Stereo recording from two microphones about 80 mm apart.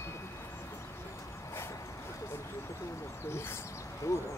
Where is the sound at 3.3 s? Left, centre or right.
Left.